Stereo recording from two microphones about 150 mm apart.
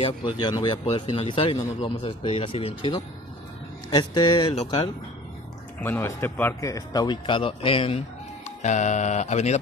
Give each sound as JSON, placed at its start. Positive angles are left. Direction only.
{"t": 0.0, "sound": "speech", "side_deg": 30}
{"t": 3.9, "sound": "speech", "side_deg": 30}
{"t": 5.8, "sound": "speech", "side_deg": 15}
{"t": 8.5, "sound": "speech", "side_deg": 50}